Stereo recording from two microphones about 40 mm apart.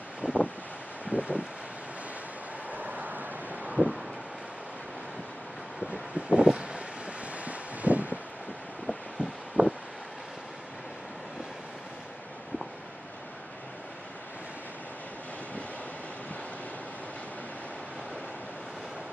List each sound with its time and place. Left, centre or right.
0.2 s wind: right
2.7 s vehicle: right
3.7 s vehicle: centre
5.9 s wind: right
7.3 s wind: right
9.2 s a sound: left
9.6 s vehicle: right